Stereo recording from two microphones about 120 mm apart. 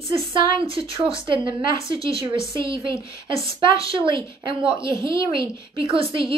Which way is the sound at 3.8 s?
45° right (ahead or behind).